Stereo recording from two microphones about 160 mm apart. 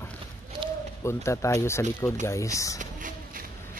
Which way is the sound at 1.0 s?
15° left (ahead or behind).